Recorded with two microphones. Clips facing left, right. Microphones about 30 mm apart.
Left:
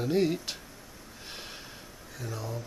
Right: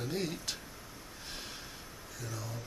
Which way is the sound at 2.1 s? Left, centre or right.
Centre.